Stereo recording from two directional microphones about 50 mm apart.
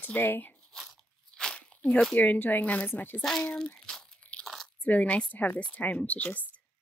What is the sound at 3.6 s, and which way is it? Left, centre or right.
Crumpling, centre.